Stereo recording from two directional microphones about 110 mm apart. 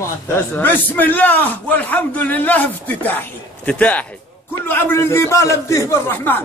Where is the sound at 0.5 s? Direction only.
15° left (ahead or behind).